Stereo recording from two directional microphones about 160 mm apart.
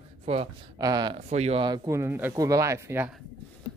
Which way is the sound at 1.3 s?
40° right (ahead or behind).